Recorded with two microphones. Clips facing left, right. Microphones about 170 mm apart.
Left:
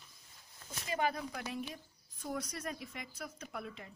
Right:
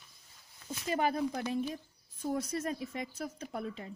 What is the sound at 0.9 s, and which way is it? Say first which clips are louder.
Speech: right 5 dB; 35° right (ahead or behind).